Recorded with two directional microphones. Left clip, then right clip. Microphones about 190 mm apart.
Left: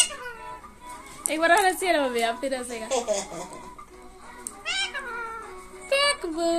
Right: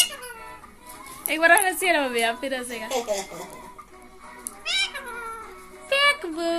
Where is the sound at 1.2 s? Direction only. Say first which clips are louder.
Right 2 dB; centre (ahead or behind).